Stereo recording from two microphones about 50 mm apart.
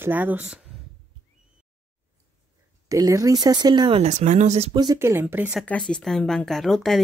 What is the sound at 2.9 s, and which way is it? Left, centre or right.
Speech, right.